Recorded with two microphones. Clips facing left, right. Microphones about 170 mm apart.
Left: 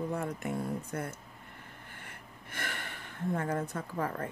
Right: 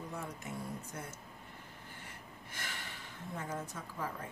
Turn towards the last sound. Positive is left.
turn(degrees=60)  # may be behind; listen again after turning